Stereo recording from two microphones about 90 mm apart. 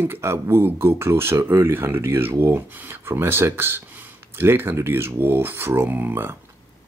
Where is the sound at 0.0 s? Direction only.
25° right (ahead or behind).